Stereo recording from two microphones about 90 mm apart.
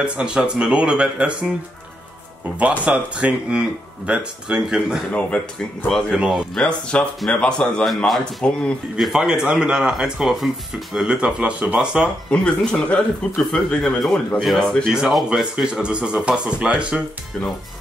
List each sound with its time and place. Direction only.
0.0 s speech: 10° right (ahead or behind)
2.8 s speech: 15° right (ahead or behind)
5.1 s speech: 15° left (ahead or behind)
5.9 s speech: 5° left (ahead or behind)
6.1 s speech: 10° right (ahead or behind)
6.5 s speech: 10° left (ahead or behind); by 12.1 s 10° right (ahead or behind)
12.3 s speech: 10° left (ahead or behind); by 17.0 s 10° right (ahead or behind)